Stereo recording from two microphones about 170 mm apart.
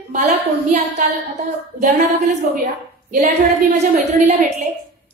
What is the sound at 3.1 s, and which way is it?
Speech, 45° right (ahead or behind).